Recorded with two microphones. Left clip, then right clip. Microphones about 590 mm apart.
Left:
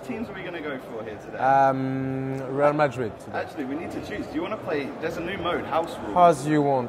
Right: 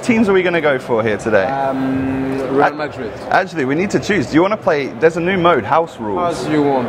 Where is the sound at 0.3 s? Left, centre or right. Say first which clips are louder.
Right 19 dB; right.